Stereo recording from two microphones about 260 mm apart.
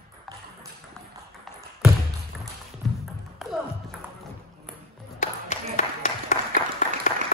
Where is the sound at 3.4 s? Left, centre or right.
Centre.